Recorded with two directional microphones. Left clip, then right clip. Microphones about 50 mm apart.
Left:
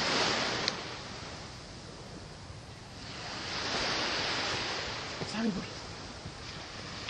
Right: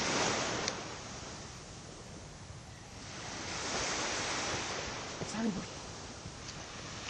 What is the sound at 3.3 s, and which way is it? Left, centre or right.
Waves, left.